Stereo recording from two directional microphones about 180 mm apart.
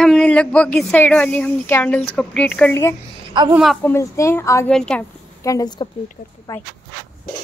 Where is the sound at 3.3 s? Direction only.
25° right (ahead or behind).